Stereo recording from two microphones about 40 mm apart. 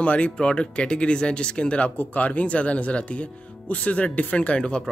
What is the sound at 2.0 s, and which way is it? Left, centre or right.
Speech, left.